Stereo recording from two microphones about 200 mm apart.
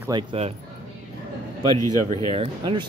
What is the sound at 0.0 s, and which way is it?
Speech, 25° right (ahead or behind).